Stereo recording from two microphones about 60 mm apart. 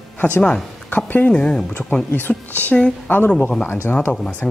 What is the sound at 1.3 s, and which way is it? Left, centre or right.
Speech, centre.